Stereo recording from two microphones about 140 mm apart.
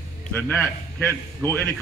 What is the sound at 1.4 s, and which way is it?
Speech, 15° left (ahead or behind).